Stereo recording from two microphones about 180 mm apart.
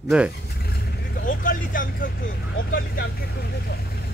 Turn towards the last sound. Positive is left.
turn(degrees=65)  # may be behind; listen again after turning